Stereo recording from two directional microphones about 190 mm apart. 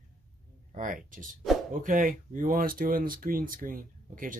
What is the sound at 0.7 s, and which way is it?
Speech, 45° right (ahead or behind).